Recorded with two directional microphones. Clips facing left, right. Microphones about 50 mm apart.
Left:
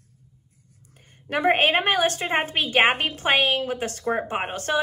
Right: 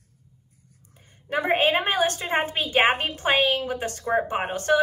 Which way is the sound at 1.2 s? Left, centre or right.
Left.